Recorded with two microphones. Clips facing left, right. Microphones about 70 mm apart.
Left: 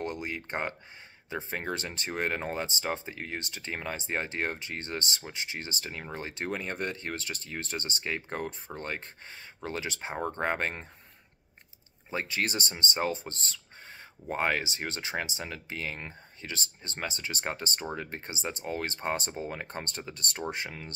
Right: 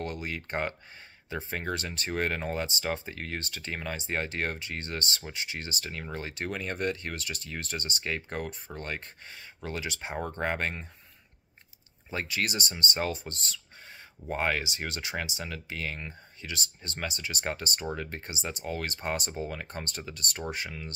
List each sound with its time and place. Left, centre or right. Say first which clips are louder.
0.0 s speech: left 1 dB; left
12.1 s speech: even; left